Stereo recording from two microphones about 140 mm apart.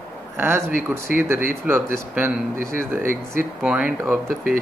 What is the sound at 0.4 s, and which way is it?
Speech, 15° right (ahead or behind).